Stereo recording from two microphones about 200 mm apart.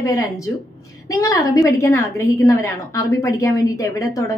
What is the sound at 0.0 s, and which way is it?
A woman's voice, 15° left (ahead or behind).